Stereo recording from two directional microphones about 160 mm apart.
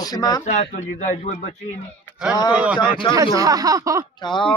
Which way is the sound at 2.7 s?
30° left (ahead or behind).